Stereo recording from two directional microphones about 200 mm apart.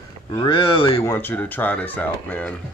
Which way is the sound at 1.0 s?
10° left (ahead or behind).